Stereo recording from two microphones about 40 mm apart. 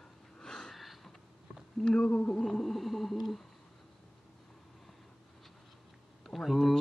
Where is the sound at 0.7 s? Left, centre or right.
Centre.